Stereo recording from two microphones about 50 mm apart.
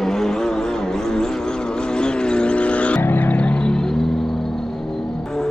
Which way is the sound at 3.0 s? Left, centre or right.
Left.